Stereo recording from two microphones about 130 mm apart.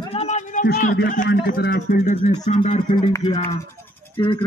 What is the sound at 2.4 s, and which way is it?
Speech, 50° left (ahead or behind).